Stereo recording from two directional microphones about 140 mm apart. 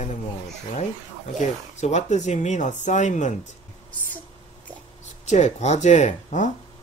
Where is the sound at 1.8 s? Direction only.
55° left (ahead or behind).